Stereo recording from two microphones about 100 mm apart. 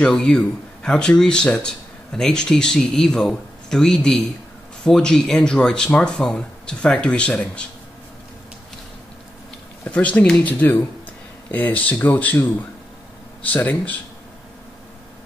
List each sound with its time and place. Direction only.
0.0 s speech: 5° left (ahead or behind)
9.8 s speech: 15° left (ahead or behind)